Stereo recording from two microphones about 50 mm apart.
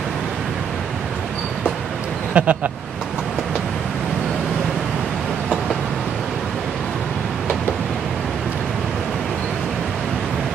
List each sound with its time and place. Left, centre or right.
2.3 s speech: right